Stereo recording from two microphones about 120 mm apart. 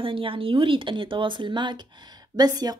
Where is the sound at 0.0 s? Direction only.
45° right (ahead or behind).